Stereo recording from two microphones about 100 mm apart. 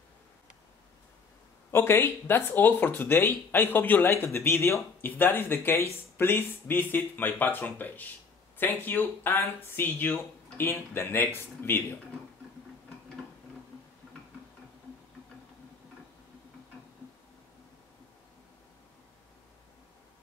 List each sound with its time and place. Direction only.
1.7 s speech: 25° left (ahead or behind)